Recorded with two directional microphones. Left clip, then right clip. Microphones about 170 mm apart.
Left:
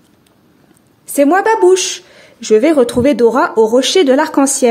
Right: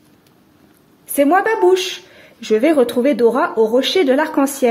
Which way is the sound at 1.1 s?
30° left (ahead or behind).